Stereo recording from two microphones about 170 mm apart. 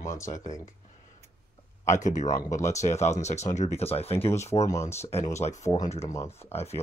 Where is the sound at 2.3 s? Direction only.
20° left (ahead or behind).